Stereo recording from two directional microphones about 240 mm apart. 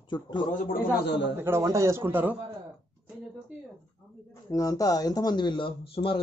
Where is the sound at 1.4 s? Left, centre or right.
Centre.